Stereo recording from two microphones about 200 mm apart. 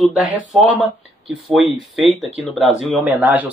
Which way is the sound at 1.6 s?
30° left (ahead or behind).